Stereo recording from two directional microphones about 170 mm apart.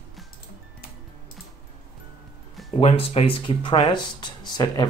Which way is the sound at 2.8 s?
35° left (ahead or behind).